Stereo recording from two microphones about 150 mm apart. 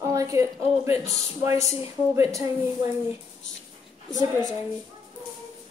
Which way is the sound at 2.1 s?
20° right (ahead or behind).